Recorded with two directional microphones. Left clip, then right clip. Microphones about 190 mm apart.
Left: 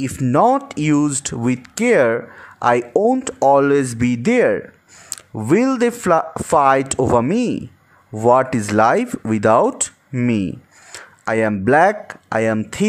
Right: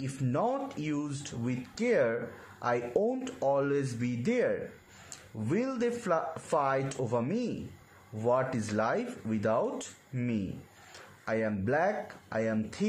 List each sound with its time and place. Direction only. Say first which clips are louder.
0.0 s speech: left 17 dB; 50° left (ahead or behind)